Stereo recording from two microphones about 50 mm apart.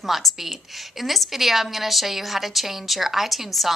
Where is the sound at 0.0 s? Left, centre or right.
Centre.